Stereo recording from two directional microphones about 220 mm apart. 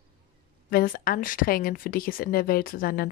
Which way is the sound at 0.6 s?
40° left (ahead or behind).